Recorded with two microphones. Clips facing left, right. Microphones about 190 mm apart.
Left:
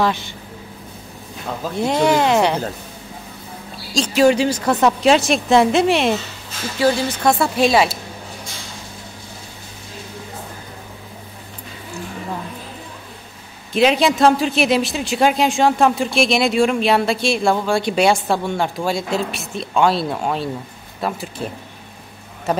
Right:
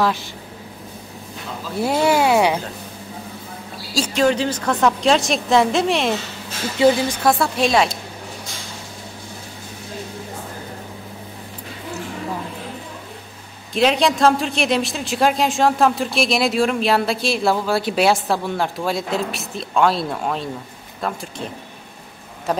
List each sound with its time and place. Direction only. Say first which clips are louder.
0.0 s speech: left 1 dB; centre (ahead or behind)
1.8 s speech: left 1 dB; 5° right (ahead or behind)
4.1 s speech: left 4 dB; 10° left (ahead or behind)
6.8 s speech: right 2 dB; 15° right (ahead or behind)
7.2 s speech: left 2 dB; centre (ahead or behind)
13.7 s speech: left 2 dB; centre (ahead or behind)
22.5 s speech: left 2 dB; centre (ahead or behind)